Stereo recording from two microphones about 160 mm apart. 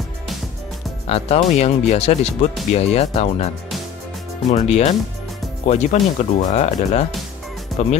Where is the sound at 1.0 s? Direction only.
40° left (ahead or behind).